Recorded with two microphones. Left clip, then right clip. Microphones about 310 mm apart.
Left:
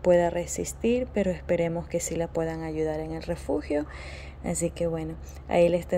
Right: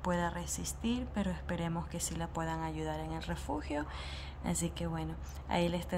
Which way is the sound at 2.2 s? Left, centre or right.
Right.